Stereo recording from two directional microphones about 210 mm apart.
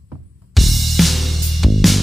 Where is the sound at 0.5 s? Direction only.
Centre (ahead or behind).